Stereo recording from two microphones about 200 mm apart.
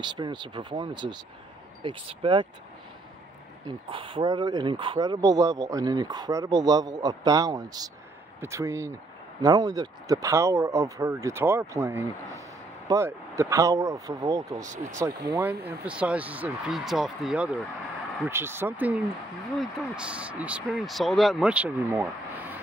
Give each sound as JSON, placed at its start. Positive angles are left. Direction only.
{"t": 0.0, "sound": "speech", "side_deg": -20}
{"t": 3.6, "sound": "speech", "side_deg": -25}
{"t": 14.6, "sound": "speech", "side_deg": -40}
{"t": 15.3, "sound": "speech", "side_deg": -10}